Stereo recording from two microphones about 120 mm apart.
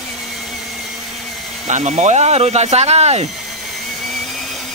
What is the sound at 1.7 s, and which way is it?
Speech, 80° right.